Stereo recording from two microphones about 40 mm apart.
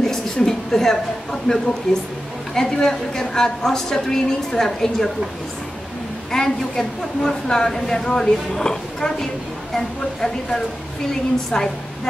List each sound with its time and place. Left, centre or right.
0.0 s a sound: centre
1.5 s a woman's voice: centre
1.9 s a woman's voice: centre
2.5 s a woman's voice: centre
6.3 s a woman's voice: centre